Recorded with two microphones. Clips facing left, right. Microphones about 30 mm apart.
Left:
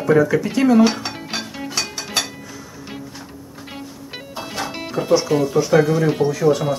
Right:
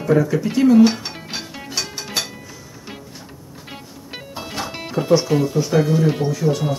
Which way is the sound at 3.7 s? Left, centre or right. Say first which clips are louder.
Left 1 dB; centre.